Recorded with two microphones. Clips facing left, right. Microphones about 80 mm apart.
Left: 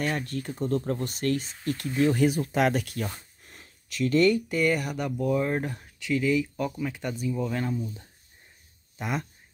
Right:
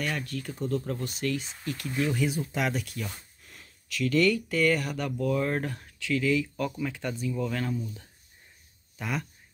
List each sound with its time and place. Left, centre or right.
0.0 s speech: left
2.1 s speech: left
3.1 s a sound: left
4.6 s speech: centre